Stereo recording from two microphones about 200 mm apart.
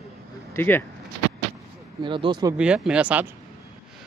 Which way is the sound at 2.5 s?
5° right (ahead or behind).